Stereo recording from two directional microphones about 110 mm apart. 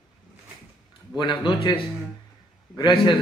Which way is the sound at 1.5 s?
45° left (ahead or behind).